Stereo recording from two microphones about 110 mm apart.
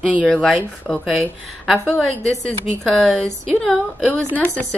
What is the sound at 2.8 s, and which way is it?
A woman's voice, 5° left (ahead or behind).